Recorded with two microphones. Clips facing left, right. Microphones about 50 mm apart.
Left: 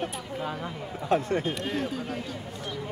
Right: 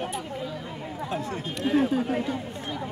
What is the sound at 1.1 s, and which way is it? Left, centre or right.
Speech, left.